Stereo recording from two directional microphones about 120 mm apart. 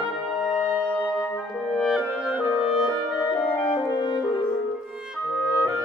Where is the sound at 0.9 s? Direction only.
15° left (ahead or behind).